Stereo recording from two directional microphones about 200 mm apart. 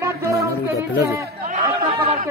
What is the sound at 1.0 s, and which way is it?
Speech, 15° right (ahead or behind).